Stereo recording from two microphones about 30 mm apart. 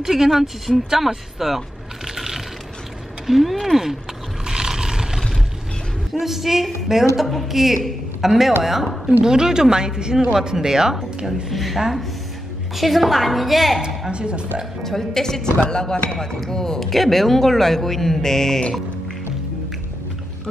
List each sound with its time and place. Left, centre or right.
0.0 s a woman's voice: centre
0.8 s a woman's voice: centre
2.1 s a sound: centre
3.3 s a woman's voice: centre
4.5 s a sound: right
6.1 s a woman's voice: centre
9.2 s speech: right
11.5 s a woman's voice: centre
14.1 s speech: right
14.8 s speech: centre
16.8 s speech: centre